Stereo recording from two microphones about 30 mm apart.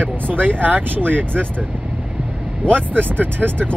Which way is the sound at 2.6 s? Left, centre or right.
Right.